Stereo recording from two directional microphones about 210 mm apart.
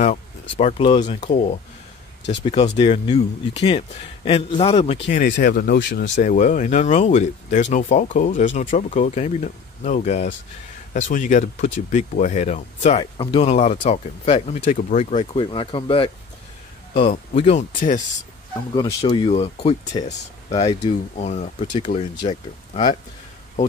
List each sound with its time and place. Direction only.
0.0 s speech: 35° left (ahead or behind)
2.4 s speech: 25° left (ahead or behind)
5.3 s speech: 50° left (ahead or behind)
6.2 s speech: 35° left (ahead or behind)
13.0 s speech: 20° left (ahead or behind)
18.8 s speech: 20° left (ahead or behind)